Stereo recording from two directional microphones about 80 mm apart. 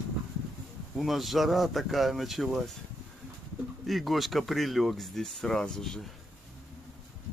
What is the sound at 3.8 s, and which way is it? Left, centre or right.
Speech, centre.